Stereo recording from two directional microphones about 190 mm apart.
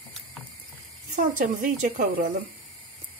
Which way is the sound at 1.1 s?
45° right (ahead or behind).